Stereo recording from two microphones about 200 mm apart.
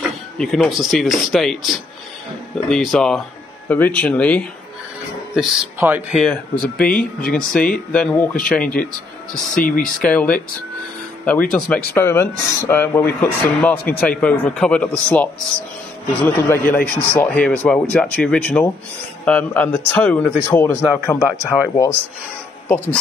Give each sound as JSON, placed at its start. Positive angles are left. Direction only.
{"t": 0.0, "sound": "speech", "side_deg": 0}
{"t": 6.1, "sound": "speech", "side_deg": 0}
{"t": 9.6, "sound": "speech", "side_deg": 45}
{"t": 10.0, "sound": "speech", "side_deg": 5}